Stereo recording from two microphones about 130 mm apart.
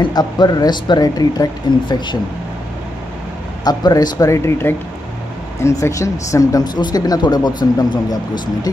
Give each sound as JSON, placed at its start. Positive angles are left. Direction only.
{"t": 0.0, "sound": "speech", "side_deg": 35}
{"t": 3.6, "sound": "speech", "side_deg": 30}